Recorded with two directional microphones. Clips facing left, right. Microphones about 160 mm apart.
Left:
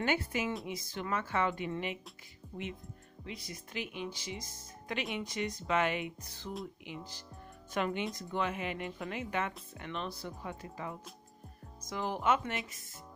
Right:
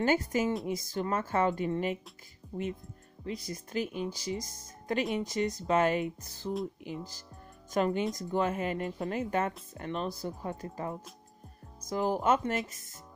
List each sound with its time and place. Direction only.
0.0 s speech: 40° right (ahead or behind)